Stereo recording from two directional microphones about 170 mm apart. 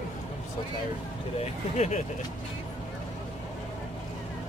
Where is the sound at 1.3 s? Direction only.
40° left (ahead or behind).